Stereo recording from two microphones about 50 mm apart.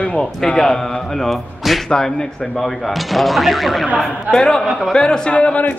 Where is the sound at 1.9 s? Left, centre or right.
Centre.